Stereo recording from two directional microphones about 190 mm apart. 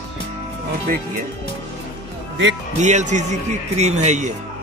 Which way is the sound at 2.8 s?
40° right (ahead or behind).